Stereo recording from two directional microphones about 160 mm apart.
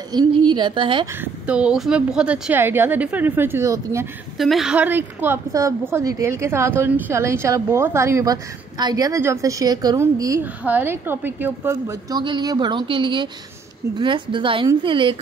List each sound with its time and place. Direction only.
0.1 s a woman's voice: 25° right (ahead or behind)
1.2 s a woman's voice: 10° right (ahead or behind)
4.4 s a woman's voice: centre (ahead or behind); by 15.1 s 30° right (ahead or behind)